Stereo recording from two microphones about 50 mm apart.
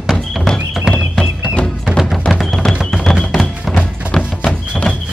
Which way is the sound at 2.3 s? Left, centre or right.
Centre.